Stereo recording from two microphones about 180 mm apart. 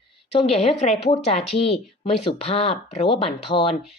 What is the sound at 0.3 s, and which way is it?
Speech, 35° left (ahead or behind).